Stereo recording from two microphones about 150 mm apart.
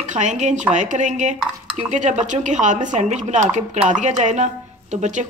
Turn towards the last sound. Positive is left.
turn(degrees=-50)  # may be behind; listen again after turning